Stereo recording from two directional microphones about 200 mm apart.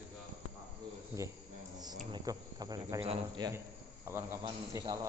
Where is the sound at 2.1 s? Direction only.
20° right (ahead or behind).